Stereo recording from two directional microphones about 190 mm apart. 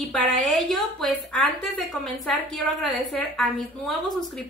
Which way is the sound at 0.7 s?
5° left (ahead or behind).